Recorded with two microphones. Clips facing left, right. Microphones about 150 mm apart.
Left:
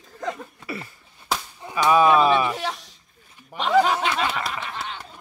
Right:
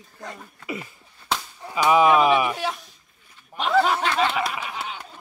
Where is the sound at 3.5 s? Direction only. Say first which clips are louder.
Even; 90° left.